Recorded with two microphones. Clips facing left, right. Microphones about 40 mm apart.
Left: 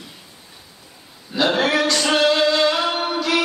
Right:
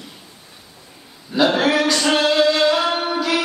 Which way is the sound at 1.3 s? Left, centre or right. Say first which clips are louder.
Right 2 dB; centre.